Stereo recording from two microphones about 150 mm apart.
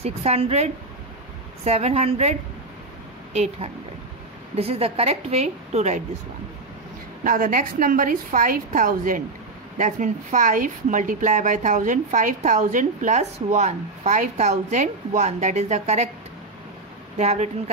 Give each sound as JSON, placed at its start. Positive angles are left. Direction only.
{"t": 0.0, "sound": "a woman's voice", "side_deg": -45}
{"t": 3.3, "sound": "a woman's voice", "side_deg": -45}
{"t": 7.2, "sound": "a woman's voice", "side_deg": -65}
{"t": 17.2, "sound": "a woman's voice", "side_deg": -45}